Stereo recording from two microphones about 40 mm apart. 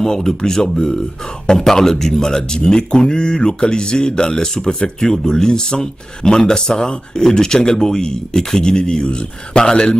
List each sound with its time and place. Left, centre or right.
0.0 s speech: centre